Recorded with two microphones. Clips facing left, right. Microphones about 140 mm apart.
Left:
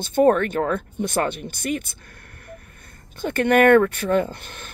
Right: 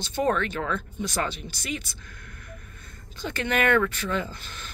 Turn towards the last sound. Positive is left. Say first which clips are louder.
# left 6 dB
turn(degrees=55)  # may be behind; listen again after turning